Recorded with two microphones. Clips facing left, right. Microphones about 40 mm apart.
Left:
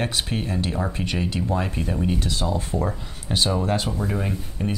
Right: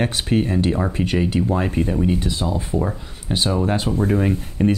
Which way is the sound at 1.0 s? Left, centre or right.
Centre.